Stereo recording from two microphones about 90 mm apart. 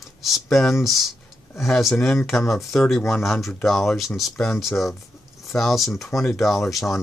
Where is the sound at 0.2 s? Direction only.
Centre (ahead or behind).